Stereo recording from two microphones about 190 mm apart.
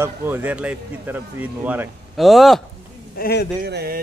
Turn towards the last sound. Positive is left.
turn(degrees=-60)  # may be behind; listen again after turning